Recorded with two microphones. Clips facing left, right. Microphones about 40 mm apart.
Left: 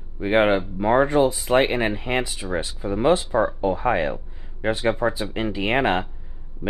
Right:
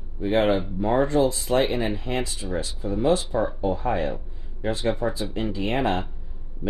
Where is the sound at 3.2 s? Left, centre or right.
Left.